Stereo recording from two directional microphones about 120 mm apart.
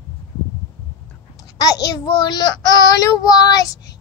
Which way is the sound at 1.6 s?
30° left (ahead or behind).